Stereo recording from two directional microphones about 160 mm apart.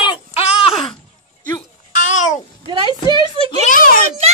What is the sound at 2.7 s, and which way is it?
Speech, 30° right (ahead or behind).